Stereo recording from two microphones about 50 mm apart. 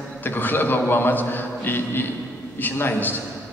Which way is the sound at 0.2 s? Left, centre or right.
Left.